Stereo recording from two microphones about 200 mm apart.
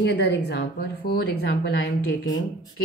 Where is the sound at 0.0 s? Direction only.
60° left (ahead or behind).